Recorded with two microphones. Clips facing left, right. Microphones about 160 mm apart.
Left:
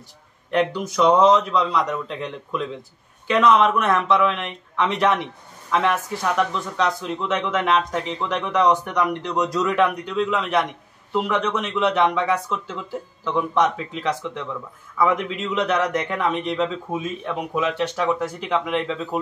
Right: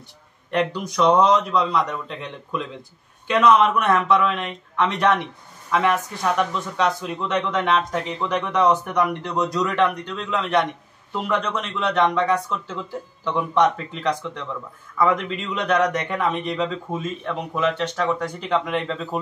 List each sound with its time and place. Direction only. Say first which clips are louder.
0.5 s speech: left 2 dB; centre (ahead or behind)